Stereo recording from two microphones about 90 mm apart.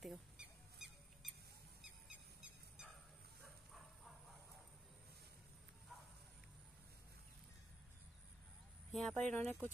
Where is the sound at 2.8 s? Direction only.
5° right (ahead or behind).